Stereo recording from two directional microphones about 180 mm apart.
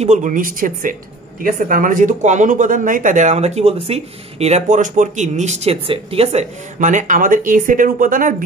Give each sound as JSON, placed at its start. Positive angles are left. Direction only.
{"t": 0.0, "sound": "speech", "side_deg": -40}